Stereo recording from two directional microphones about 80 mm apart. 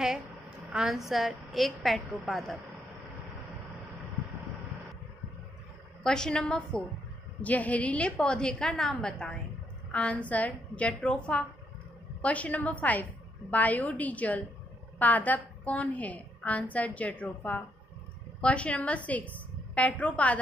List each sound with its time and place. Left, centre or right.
0.7 s a woman's voice: centre
6.0 s a woman's voice: centre
18.4 s a woman's voice: centre